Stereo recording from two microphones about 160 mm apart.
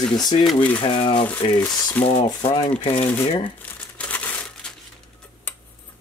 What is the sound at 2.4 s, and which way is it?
Speech, 35° left (ahead or behind).